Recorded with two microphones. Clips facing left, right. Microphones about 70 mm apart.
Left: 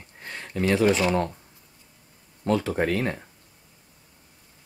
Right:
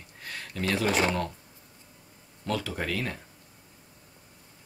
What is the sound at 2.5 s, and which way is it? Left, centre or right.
Speech, left.